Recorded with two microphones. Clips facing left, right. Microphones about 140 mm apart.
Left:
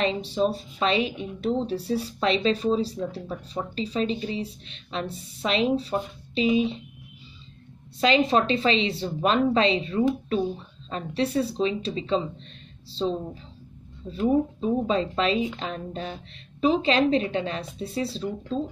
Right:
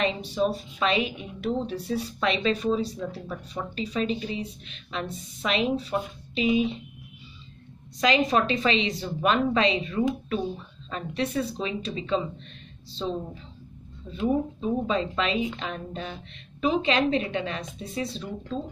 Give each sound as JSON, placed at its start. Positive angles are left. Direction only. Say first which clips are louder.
{"t": 0.0, "sound": "speech", "louder": "left 1 dB", "side_deg": 30}
{"t": 8.0, "sound": "speech", "louder": "left 2 dB", "side_deg": 30}